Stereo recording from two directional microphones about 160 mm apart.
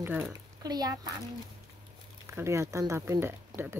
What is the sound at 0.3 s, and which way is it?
Speech, 25° right (ahead or behind).